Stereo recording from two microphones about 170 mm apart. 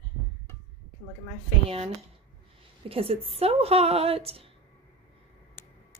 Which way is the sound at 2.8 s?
35° right (ahead or behind).